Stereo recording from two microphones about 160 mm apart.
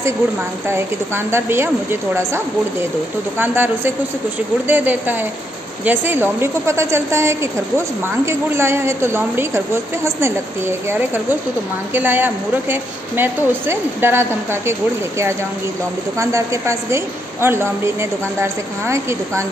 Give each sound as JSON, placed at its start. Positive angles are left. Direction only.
{"t": 0.7, "sound": "a woman's voice", "side_deg": -15}